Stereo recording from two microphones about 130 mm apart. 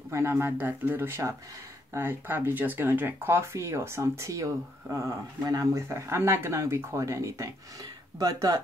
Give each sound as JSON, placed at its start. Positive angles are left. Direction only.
{"t": 0.1, "sound": "speech", "side_deg": -20}